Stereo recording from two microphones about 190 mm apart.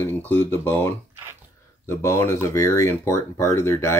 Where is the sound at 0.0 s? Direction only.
10° left (ahead or behind).